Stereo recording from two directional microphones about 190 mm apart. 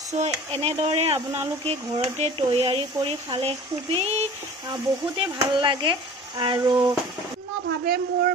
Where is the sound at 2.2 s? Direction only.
30° right (ahead or behind).